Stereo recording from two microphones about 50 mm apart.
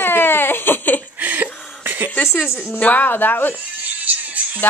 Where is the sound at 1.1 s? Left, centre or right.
Right.